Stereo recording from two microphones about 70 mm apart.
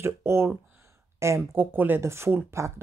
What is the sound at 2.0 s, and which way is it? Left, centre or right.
Speech, right.